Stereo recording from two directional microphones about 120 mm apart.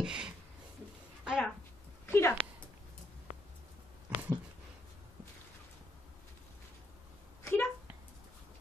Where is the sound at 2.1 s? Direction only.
20° left (ahead or behind).